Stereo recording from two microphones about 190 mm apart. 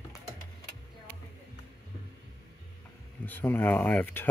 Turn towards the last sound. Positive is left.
turn(degrees=10)  # may be behind; listen again after turning